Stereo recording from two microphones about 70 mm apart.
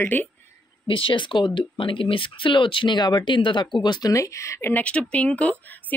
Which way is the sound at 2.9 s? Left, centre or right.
Left.